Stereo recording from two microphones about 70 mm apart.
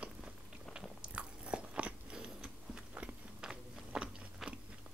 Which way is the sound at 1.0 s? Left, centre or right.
Centre.